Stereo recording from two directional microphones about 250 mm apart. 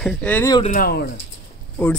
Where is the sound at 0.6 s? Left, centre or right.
Left.